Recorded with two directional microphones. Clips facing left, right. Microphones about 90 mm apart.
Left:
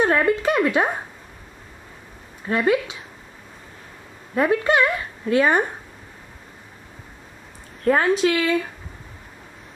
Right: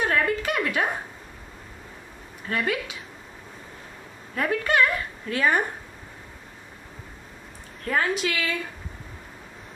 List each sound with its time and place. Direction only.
0.0 s speech: 25° left (ahead or behind)
2.4 s speech: 25° left (ahead or behind)
4.4 s speech: 25° left (ahead or behind)
7.9 s a woman's voice: 30° left (ahead or behind)